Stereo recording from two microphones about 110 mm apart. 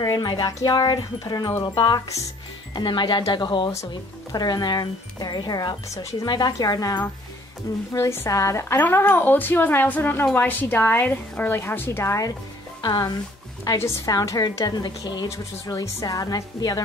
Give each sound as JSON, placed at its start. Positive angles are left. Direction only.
{"t": 0.0, "sound": "speech", "side_deg": 40}
{"t": 7.9, "sound": "speech", "side_deg": 25}
{"t": 12.8, "sound": "speech", "side_deg": 40}
{"t": 15.3, "sound": "speech", "side_deg": 30}